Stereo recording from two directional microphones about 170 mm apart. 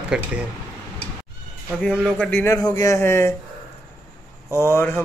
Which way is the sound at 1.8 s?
5° left (ahead or behind).